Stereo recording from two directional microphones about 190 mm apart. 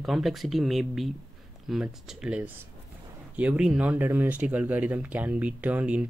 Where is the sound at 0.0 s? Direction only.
Centre (ahead or behind).